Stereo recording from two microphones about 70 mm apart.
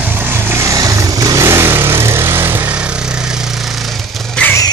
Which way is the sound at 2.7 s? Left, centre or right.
Centre.